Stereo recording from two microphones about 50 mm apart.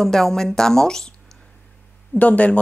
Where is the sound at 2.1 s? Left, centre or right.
Left.